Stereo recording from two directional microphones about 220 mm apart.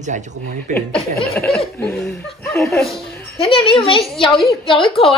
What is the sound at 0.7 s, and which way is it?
Speech, 5° left (ahead or behind).